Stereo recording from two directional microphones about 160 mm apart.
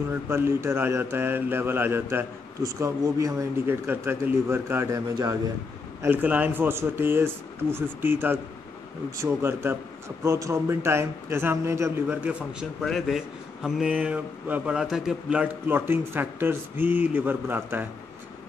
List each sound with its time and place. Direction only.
0.1 s a man's voice: 15° right (ahead or behind)
6.0 s a man's voice: 10° right (ahead or behind)